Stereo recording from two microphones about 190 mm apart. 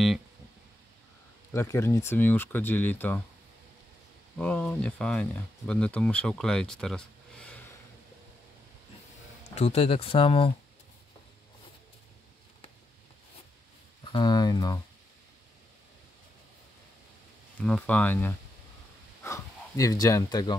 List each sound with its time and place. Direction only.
1.5 s speech: 15° left (ahead or behind)
4.4 s speech: 5° left (ahead or behind)
9.6 s speech: 35° left (ahead or behind)
14.0 s speech: 25° left (ahead or behind)
17.6 s speech: 10° left (ahead or behind)